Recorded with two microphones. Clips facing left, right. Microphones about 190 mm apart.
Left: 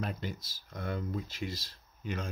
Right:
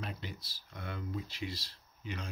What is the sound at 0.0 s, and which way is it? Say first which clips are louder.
Speech: left 6 dB; 45° left (ahead or behind).